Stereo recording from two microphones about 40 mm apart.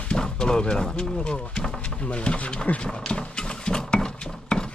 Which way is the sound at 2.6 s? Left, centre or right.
Left.